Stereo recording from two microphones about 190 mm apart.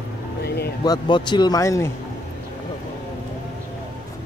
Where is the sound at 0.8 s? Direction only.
20° left (ahead or behind).